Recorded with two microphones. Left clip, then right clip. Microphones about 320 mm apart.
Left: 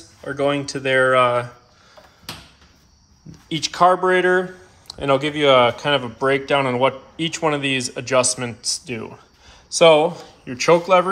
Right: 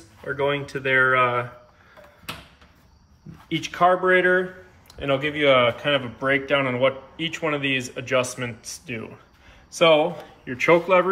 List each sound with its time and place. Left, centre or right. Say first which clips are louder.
0.2 s a man's voice: left 3 dB; centre
3.4 s a man's voice: left 4 dB; centre